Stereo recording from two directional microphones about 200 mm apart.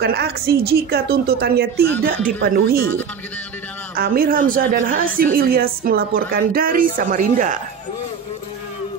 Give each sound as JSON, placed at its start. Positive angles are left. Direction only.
{"t": 0.0, "sound": "a woman's voice", "side_deg": -55}
{"t": 3.9, "sound": "a woman's voice", "side_deg": -45}